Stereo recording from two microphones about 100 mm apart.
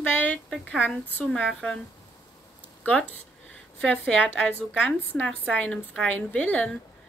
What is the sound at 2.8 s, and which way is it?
Speech, 10° left (ahead or behind).